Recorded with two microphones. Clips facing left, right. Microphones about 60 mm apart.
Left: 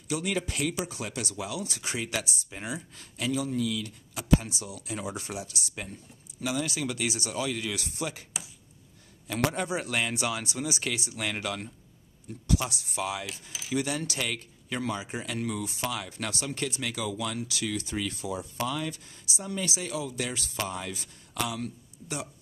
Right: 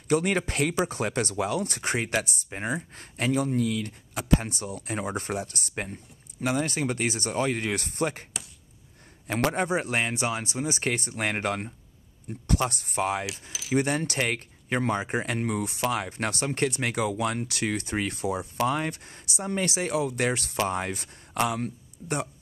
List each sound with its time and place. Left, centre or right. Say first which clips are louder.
0.1 s speech: right 6 dB; right
9.3 s speech: right 4 dB; right
13.3 s speech: right 3 dB; centre
13.7 s speech: right 5 dB; right